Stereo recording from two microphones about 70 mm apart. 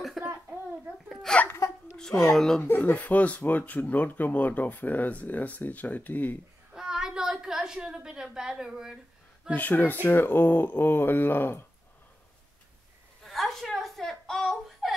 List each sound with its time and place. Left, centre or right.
0.2 s a sound: centre
1.0 s a child's voice: centre
1.6 s giggle: left
2.0 s speech: centre
2.8 s speech: left
6.7 s a sound: centre
9.5 s speech: left
13.2 s whimper: centre